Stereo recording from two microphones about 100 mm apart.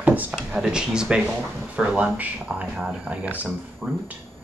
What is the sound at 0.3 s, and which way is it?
Speech, 5° right (ahead or behind).